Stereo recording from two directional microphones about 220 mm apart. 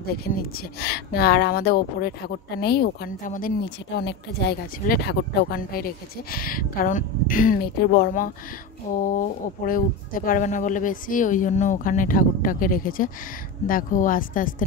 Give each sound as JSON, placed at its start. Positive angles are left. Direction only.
{"t": 0.2, "sound": "speech", "side_deg": 45}